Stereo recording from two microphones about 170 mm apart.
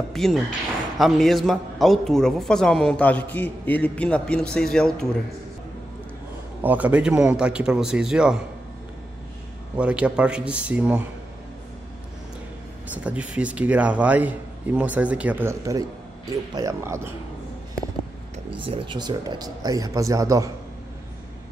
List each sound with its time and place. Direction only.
0.1 s a man's voice: centre (ahead or behind)
6.6 s a man's voice: 10° right (ahead or behind)
9.8 s a man's voice: 5° right (ahead or behind)
12.9 s a man's voice: 5° right (ahead or behind)
18.6 s a man's voice: 30° right (ahead or behind)